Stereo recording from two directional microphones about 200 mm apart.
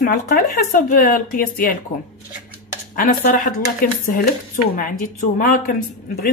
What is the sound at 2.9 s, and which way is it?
Speech, 45° left (ahead or behind).